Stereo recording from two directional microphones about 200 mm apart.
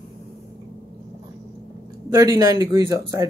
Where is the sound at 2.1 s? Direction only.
15° right (ahead or behind).